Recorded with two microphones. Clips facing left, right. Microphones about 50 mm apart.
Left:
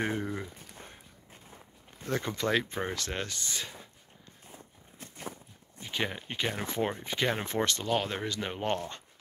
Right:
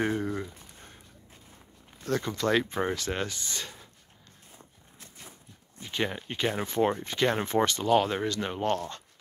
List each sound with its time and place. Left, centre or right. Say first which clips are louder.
0.0 s a sound: right 3 dB; centre
2.0 s speech: right 3 dB; centre
2.4 s speech: right 4 dB; centre
4.9 s a sound: left 8 dB; left
5.8 s speech: right 2 dB; centre
7.3 s speech: right 4 dB; centre
8.6 s speech: right 3 dB; left